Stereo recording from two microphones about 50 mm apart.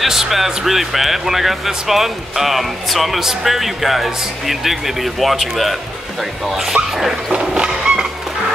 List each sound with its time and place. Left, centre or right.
0.0 s speech: centre
6.5 s speech: centre
7.3 s a sound: centre